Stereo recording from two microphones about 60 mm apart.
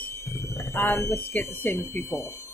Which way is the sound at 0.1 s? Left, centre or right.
Left.